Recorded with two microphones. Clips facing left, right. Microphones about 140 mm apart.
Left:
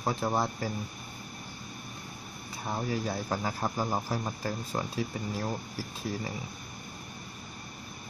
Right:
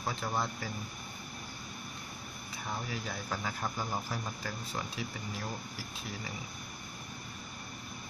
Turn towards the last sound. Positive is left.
turn(degrees=40)  # may be behind; listen again after turning